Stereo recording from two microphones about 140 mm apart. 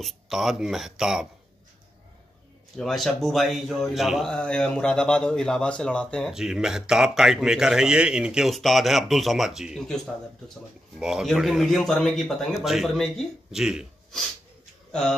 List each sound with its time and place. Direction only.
0.0 s a man's voice: centre (ahead or behind)
2.8 s a man's voice: centre (ahead or behind)
6.3 s a man's voice: 5° right (ahead or behind)